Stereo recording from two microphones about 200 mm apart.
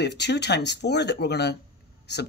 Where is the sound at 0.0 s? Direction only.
55° left (ahead or behind).